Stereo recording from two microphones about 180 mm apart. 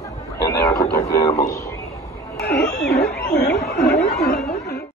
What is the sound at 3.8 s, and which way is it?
Speech, 65° left (ahead or behind).